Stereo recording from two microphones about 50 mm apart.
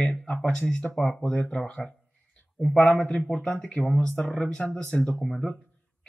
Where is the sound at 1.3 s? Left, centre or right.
Centre.